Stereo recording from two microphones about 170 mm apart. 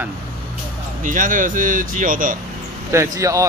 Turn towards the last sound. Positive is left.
turn(degrees=-20)  # may be behind; listen again after turning